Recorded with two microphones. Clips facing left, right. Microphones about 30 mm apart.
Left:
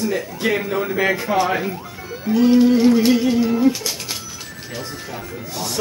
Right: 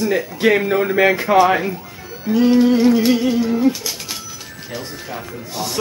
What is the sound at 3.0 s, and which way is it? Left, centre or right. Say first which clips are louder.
Music: even; centre.